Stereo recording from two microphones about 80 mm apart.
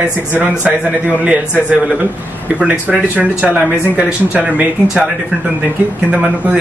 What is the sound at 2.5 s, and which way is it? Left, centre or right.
Speech, centre.